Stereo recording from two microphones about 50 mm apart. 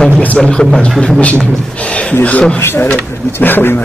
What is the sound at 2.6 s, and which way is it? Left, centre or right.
Speech, left.